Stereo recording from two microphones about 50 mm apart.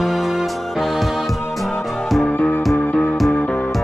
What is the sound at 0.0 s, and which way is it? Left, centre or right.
Music, centre.